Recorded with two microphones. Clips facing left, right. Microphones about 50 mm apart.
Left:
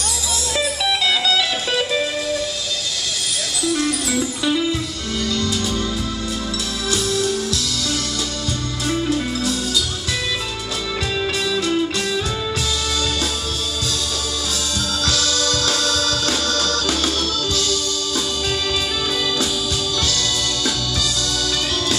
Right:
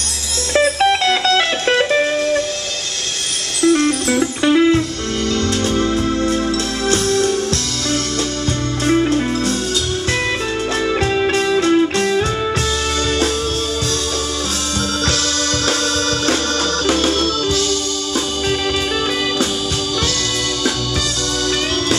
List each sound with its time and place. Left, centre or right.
0.5 s music: right
3.6 s music: right
8.8 s music: right
11.1 s music: right
15.0 s music: right